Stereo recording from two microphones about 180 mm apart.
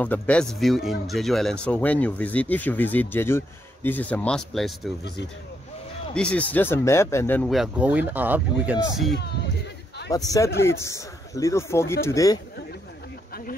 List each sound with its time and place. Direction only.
0.0 s speech: 5° left (ahead or behind)
6.1 s speech: 5° left (ahead or behind)
7.5 s speech: 5° right (ahead or behind)
10.1 s speech: 20° left (ahead or behind)